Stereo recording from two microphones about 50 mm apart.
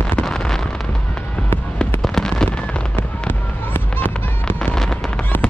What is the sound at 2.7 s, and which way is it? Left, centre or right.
Fireworks, left.